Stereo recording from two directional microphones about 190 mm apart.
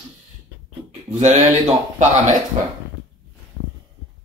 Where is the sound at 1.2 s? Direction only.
40° right (ahead or behind).